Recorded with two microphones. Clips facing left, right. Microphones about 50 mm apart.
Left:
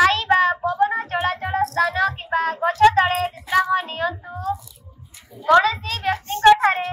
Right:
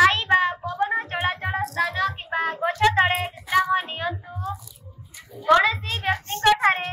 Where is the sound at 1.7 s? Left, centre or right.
Centre.